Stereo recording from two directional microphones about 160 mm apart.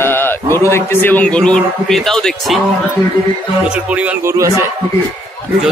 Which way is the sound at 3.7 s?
10° right (ahead or behind).